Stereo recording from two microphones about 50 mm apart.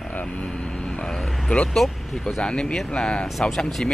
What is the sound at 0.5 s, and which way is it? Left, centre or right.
Vehicle, centre.